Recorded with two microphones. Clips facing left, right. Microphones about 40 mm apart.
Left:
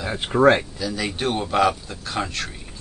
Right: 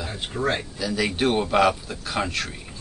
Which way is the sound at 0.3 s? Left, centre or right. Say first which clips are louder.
Left 11 dB; left.